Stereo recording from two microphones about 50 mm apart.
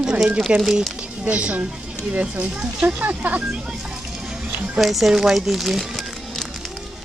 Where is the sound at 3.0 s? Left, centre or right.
Right.